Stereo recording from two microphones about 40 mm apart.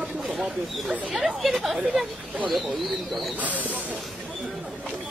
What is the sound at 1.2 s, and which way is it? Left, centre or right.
Speech, centre.